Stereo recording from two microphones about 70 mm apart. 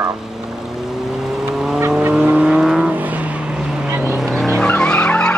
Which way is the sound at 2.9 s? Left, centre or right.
Right.